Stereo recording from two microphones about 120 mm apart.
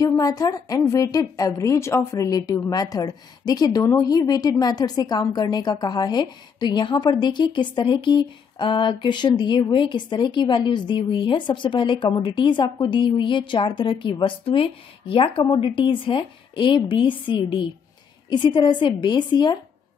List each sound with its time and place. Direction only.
0.0 s a woman's voice: 30° left (ahead or behind)